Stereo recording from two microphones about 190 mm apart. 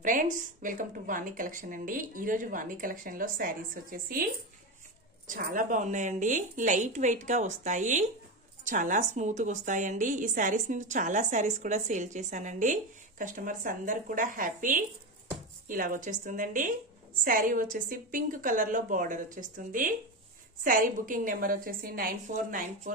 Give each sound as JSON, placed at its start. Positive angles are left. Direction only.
{"t": 0.0, "sound": "speech", "side_deg": -45}
{"t": 5.2, "sound": "a woman's voice", "side_deg": -45}